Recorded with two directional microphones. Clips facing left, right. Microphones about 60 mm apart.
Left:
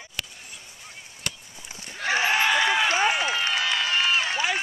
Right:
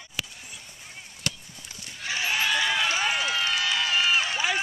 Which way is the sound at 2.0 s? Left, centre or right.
Left.